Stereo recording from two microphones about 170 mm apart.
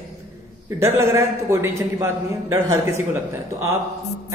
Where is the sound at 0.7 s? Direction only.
15° right (ahead or behind).